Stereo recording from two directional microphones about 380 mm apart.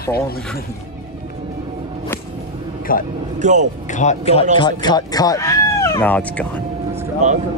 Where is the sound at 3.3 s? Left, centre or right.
Centre.